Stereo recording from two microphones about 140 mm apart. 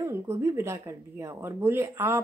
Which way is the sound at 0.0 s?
20° right (ahead or behind).